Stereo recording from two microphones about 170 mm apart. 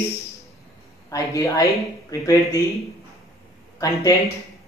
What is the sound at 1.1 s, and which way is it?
Speech, 20° left (ahead or behind).